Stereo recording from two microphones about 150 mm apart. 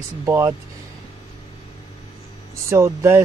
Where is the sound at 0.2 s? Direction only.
20° right (ahead or behind).